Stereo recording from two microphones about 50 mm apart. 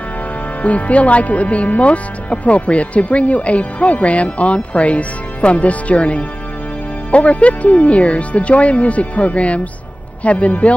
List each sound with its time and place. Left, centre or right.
0.6 s speech: left